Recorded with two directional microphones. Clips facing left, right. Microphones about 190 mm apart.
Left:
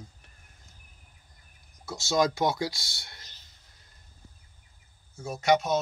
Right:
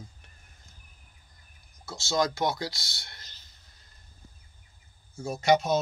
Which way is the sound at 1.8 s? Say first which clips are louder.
Left 2 dB; 20° left (ahead or behind).